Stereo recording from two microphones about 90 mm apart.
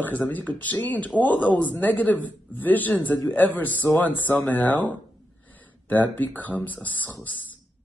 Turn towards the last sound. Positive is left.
turn(degrees=20)  # may be behind; listen again after turning